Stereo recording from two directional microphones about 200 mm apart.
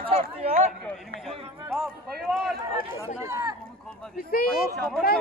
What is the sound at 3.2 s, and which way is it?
Chatter, 15° right (ahead or behind).